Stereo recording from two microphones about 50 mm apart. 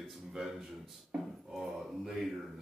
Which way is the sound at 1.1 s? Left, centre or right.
Centre.